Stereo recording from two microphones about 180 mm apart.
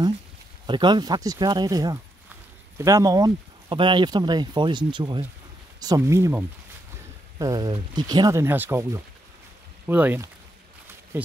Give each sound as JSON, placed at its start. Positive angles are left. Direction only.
{"t": 0.7, "sound": "speech", "side_deg": -25}